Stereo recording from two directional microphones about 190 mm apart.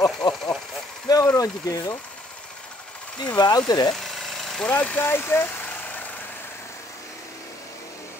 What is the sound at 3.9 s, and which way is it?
Engine, centre (ahead or behind).